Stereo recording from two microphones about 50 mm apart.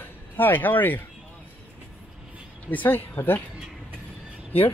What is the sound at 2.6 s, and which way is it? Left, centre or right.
Speech, left.